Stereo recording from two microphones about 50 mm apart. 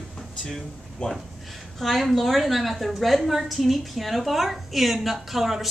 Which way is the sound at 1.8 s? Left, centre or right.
Centre.